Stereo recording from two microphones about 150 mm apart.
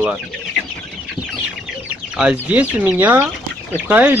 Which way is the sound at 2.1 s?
10° right (ahead or behind).